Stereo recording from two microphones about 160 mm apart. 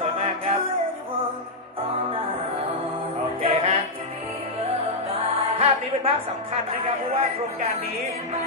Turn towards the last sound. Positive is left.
turn(degrees=-40)  # may be behind; listen again after turning